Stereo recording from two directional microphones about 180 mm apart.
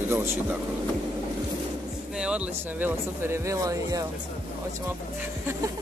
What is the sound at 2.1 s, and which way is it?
Speech, 5° right (ahead or behind).